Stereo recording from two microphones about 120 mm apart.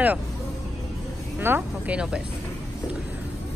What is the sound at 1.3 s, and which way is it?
Speech, 15° right (ahead or behind).